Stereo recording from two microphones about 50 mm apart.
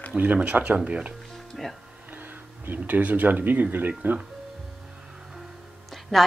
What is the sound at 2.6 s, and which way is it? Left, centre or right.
Speech, right.